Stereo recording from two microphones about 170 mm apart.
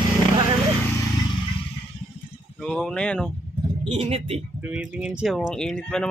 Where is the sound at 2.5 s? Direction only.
5° left (ahead or behind).